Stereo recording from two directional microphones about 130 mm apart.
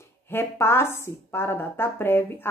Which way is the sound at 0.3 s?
20° left (ahead or behind).